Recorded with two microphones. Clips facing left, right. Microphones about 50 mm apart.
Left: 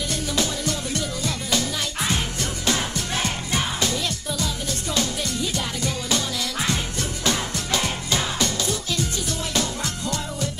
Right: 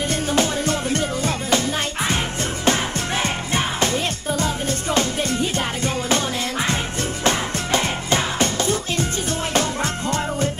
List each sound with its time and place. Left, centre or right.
0.1 s music: right